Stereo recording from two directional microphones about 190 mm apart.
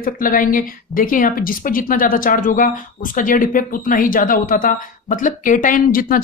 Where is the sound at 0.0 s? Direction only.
45° left (ahead or behind).